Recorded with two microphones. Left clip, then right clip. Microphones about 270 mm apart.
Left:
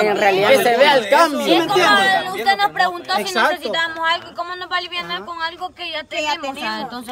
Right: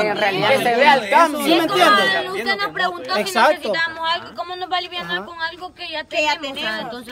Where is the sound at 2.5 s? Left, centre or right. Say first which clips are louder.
Left 7 dB; left.